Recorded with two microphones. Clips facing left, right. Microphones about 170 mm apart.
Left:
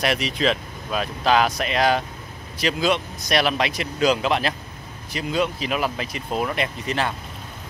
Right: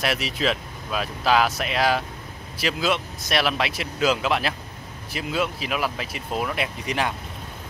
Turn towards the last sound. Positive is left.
turn(degrees=-10)  # may be behind; listen again after turning